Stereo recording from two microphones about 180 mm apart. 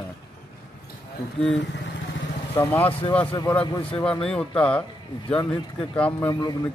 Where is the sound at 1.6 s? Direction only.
75° left (ahead or behind).